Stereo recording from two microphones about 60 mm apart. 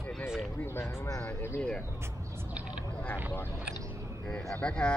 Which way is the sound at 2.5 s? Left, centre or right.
Right.